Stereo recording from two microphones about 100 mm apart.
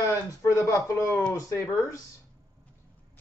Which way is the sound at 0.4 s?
30° left (ahead or behind).